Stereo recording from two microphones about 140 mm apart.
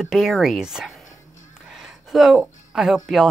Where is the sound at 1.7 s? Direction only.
Centre (ahead or behind).